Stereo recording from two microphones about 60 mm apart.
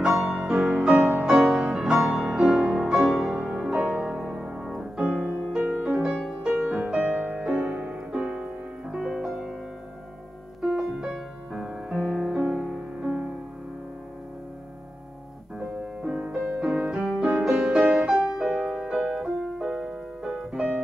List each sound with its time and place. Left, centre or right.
0.2 s music: centre
2.9 s music: centre
4.6 s piano: centre
5.7 s music: centre
7.0 s music: right; by 9.6 s centre
10.6 s music: centre
16.0 s music: centre
17.5 s music: centre